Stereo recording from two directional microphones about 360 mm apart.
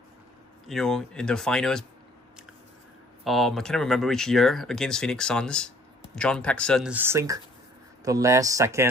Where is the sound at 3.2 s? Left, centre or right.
Centre.